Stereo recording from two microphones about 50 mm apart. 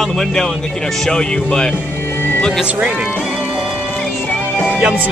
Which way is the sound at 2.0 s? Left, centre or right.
Left.